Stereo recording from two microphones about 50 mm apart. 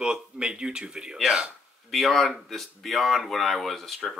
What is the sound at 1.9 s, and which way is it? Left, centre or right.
Speech, centre.